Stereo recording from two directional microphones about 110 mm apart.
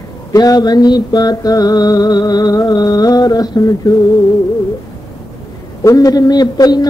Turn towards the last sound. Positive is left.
turn(degrees=40)  # may be behind; listen again after turning